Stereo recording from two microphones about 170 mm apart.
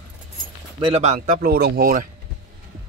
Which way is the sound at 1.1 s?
55° right (ahead or behind).